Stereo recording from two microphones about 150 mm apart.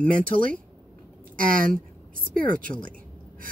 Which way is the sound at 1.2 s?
65° right (ahead or behind).